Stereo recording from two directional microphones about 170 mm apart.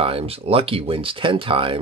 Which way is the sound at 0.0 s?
35° right (ahead or behind).